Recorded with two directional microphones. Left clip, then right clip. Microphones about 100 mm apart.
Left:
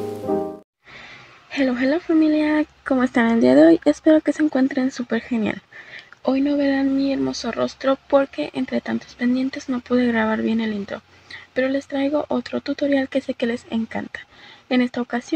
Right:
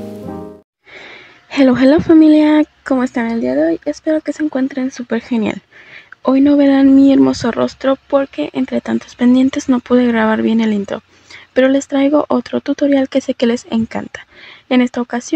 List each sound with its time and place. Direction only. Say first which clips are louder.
1.5 s speech: right 10 dB; 45° right (ahead or behind)
2.8 s speech: right 4 dB; 15° right (ahead or behind)
3.1 s speech: left 1 dB; centre (ahead or behind)
5.3 s speech: right 6 dB; 25° right (ahead or behind)
6.2 s speech: right 9 dB; 35° right (ahead or behind)
9.2 s speech: right 11 dB; 45° right (ahead or behind); by 15.3 s 25° right (ahead or behind)